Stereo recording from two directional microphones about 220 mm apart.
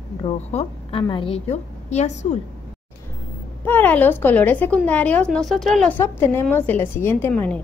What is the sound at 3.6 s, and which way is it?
A woman's voice, 10° left (ahead or behind).